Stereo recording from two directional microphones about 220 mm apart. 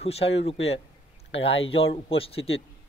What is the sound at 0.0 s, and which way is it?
Speech, 25° left (ahead or behind).